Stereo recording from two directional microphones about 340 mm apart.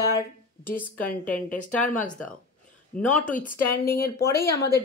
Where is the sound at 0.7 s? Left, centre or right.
Centre.